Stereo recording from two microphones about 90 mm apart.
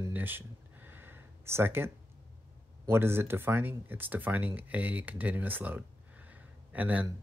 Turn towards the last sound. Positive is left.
turn(degrees=-15)  # may be behind; listen again after turning